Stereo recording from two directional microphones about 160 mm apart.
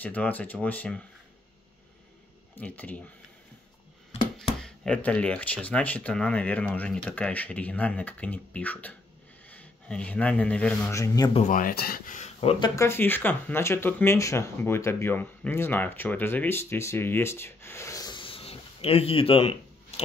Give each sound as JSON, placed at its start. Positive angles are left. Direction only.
{"t": 0.0, "sound": "speech", "side_deg": 10}
{"t": 2.5, "sound": "speech", "side_deg": 10}
{"t": 4.6, "sound": "a man's voice", "side_deg": 5}
{"t": 10.9, "sound": "a man's voice", "side_deg": 20}
{"t": 11.3, "sound": "speech", "side_deg": 55}
{"t": 12.2, "sound": "speech", "side_deg": 40}
{"t": 12.8, "sound": "speech", "side_deg": 15}